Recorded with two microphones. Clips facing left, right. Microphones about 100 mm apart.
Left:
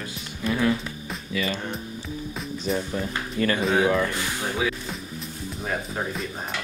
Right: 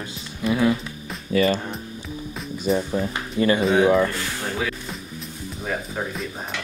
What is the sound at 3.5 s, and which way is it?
Speech, centre (ahead or behind).